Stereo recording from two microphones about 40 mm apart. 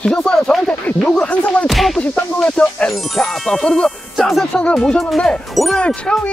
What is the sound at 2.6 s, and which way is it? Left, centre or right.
Speech, left.